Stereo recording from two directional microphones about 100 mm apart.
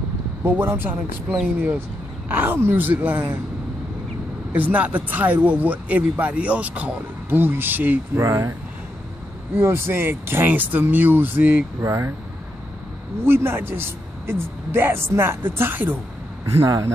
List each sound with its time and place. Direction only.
0.4 s speech: 20° right (ahead or behind)
4.5 s speech: 15° right (ahead or behind)
9.6 s speech: 25° right (ahead or behind)
13.2 s speech: 25° right (ahead or behind)